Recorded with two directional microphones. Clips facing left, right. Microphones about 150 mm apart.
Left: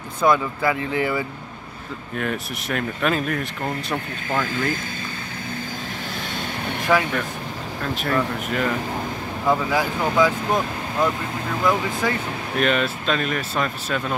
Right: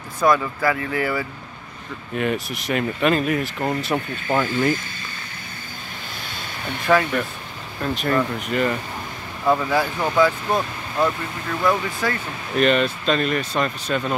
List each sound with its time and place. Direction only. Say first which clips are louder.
0.3 s speech: even; 20° left (ahead or behind)
2.1 s speech: right 3 dB; 5° right (ahead or behind)
6.9 s speech: right 2 dB; 5° left (ahead or behind)
9.7 s speech: even; 15° left (ahead or behind)
11.6 s speech: even; 15° left (ahead or behind)
12.5 s speech: right 3 dB; centre (ahead or behind)